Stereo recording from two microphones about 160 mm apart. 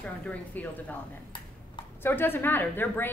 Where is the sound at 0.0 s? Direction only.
10° left (ahead or behind).